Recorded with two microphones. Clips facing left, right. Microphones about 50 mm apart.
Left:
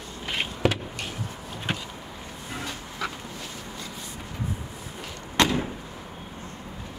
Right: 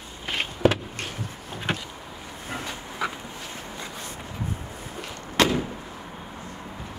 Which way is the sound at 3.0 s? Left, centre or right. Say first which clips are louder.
Right 3 dB; centre.